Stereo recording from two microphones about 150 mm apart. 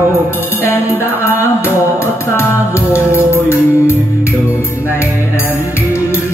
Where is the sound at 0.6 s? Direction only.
15° left (ahead or behind).